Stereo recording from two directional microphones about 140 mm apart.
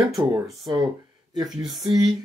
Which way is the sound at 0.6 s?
30° right (ahead or behind).